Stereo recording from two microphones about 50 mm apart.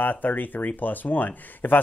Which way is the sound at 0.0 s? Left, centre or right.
Left.